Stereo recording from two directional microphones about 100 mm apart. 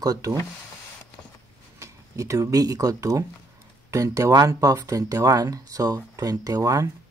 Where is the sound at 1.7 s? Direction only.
30° right (ahead or behind).